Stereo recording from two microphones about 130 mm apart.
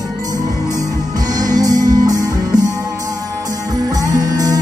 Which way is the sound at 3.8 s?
30° right (ahead or behind).